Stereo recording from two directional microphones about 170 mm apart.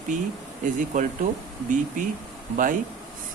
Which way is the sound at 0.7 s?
45° right (ahead or behind).